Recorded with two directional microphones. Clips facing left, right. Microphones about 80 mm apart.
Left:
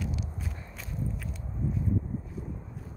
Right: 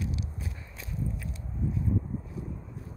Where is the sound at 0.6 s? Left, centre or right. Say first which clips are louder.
Left 1 dB; left.